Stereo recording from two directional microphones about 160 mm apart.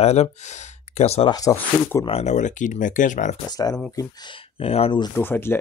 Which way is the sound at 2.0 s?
40° left (ahead or behind).